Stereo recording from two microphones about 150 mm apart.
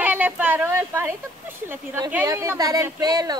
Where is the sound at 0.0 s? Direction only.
10° right (ahead or behind).